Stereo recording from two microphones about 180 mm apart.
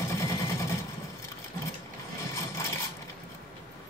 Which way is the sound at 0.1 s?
15° left (ahead or behind).